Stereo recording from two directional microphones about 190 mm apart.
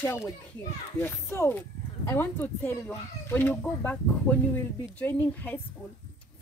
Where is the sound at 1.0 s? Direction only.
10° left (ahead or behind).